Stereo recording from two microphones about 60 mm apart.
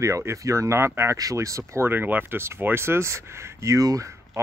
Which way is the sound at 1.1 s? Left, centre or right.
Right.